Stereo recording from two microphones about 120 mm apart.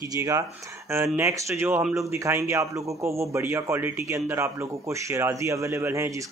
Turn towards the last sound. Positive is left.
turn(degrees=-20)  # may be behind; listen again after turning